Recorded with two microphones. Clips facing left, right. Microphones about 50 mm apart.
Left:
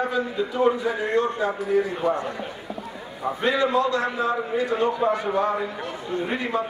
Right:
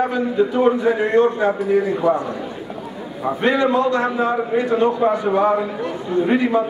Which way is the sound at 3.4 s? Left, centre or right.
Right.